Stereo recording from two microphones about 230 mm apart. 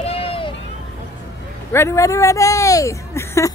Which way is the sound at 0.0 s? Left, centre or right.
Left.